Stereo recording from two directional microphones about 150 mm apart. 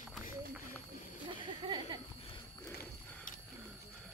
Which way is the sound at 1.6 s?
30° right (ahead or behind).